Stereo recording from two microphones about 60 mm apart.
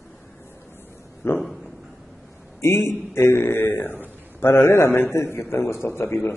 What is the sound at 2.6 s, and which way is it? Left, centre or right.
A man's voice, left.